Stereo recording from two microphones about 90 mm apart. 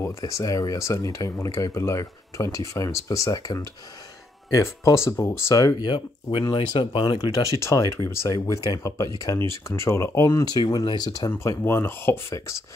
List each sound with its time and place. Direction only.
0.2 s speech: 40° left (ahead or behind)
5.8 s speech: 60° left (ahead or behind)
7.6 s speech: 35° left (ahead or behind)
8.3 s speech: 40° left (ahead or behind)
10.4 s speech: 50° left (ahead or behind)
11.4 s speech: 30° left (ahead or behind)